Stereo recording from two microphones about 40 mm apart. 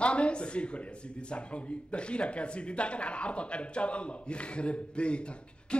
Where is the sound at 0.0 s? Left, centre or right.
Left.